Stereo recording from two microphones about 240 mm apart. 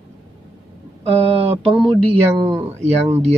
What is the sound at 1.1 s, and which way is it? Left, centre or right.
Speech, right.